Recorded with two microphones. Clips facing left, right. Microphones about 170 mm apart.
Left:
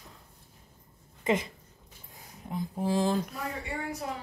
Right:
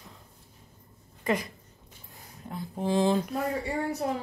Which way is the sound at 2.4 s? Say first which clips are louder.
Even; 10° left (ahead or behind).